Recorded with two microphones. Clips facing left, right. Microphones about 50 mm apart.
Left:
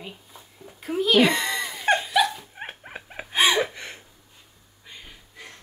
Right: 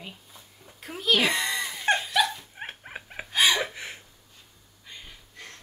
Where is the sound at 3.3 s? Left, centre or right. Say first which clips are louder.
Left 2 dB; left.